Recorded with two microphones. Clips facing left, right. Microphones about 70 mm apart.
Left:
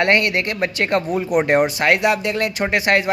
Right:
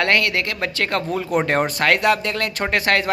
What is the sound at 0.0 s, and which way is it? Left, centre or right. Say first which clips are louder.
Speech: left 2 dB; left.